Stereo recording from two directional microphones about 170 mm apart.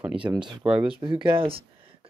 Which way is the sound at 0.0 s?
5° right (ahead or behind).